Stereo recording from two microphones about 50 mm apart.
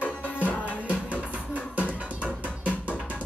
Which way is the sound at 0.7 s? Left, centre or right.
Right.